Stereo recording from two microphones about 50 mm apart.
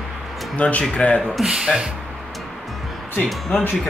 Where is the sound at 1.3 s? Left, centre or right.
Centre.